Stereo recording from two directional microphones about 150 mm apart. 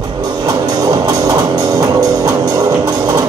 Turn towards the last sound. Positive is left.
turn(degrees=-25)  # may be behind; listen again after turning